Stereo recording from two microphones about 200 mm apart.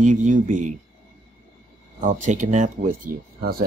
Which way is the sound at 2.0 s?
40° right (ahead or behind).